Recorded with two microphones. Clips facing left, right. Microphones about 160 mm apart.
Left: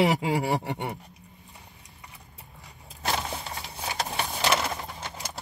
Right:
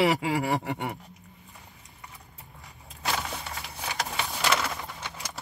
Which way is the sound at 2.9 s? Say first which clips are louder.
Left 2 dB; 35° left (ahead or behind).